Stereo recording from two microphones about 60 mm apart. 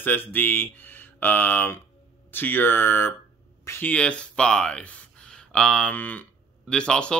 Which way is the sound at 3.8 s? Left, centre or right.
Left.